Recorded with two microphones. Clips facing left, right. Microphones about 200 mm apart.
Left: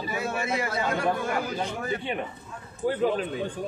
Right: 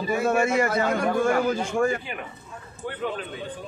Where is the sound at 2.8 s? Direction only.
35° left (ahead or behind).